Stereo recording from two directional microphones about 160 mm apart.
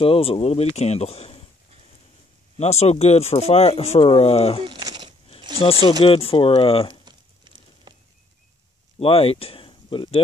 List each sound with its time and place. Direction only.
0.0 s speech: 35° left (ahead or behind)
2.5 s speech: 40° left (ahead or behind)
4.6 s a sound: 25° right (ahead or behind)
5.6 s speech: 35° left (ahead or behind)
7.1 s a sound: 30° right (ahead or behind)
9.0 s speech: 35° left (ahead or behind)